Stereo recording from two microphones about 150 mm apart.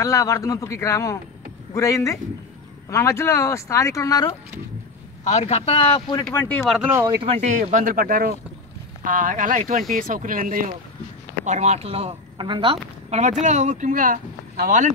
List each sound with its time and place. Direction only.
0.0 s speech: 20° left (ahead or behind)
5.3 s speech: 40° left (ahead or behind)
6.3 s speech: 15° left (ahead or behind)
6.6 s speech: centre (ahead or behind)
6.9 s speech: 15° right (ahead or behind)
7.3 s speech: 55° right (ahead or behind)
11.4 s speech: 50° right (ahead or behind); by 12.7 s 30° right (ahead or behind)
13.1 s speech: 50° right (ahead or behind)